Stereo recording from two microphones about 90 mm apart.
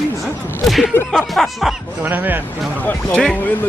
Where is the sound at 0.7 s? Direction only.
Centre (ahead or behind).